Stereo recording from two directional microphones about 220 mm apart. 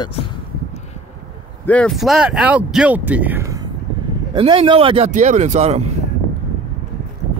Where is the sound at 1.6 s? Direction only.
5° left (ahead or behind); by 3.7 s 15° right (ahead or behind).